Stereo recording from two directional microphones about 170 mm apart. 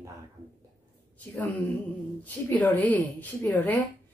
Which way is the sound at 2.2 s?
10° left (ahead or behind).